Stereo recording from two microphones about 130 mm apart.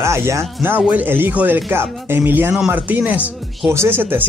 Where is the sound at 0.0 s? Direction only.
20° right (ahead or behind).